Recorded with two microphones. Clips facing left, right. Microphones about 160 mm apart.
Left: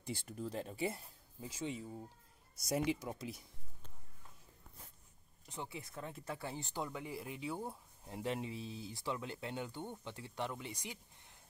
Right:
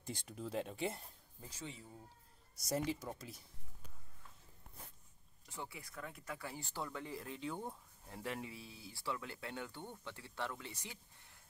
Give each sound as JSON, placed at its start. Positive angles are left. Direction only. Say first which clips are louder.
{"t": 0.0, "sound": "speech", "louder": "left 3 dB", "side_deg": 5}
{"t": 2.7, "sound": "speech", "louder": "left 3 dB", "side_deg": 15}
{"t": 5.5, "sound": "speech", "louder": "left 3 dB", "side_deg": 20}
{"t": 8.0, "sound": "speech", "louder": "left 4 dB", "side_deg": 20}